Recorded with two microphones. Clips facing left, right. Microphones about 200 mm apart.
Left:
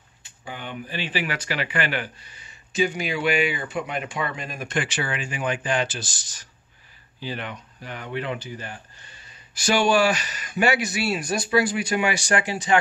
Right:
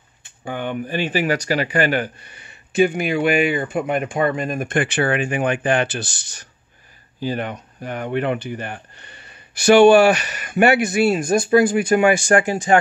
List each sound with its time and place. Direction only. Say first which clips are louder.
0.2 s speech: right 10 dB; 55° right (ahead or behind)
2.2 s speech: right 5 dB; 60° right (ahead or behind)
7.2 s speech: right 8 dB; 45° right (ahead or behind)